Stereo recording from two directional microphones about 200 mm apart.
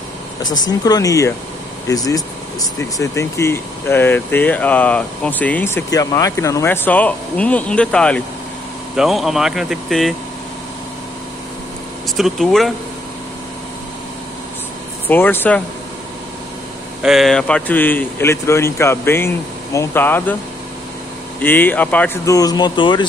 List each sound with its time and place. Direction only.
0.4 s speech: 20° left (ahead or behind); by 10.1 s centre (ahead or behind)
12.2 s speech: centre (ahead or behind)
15.0 s speech: 10° left (ahead or behind)
17.0 s speech: centre (ahead or behind)
21.4 s speech: 10° left (ahead or behind)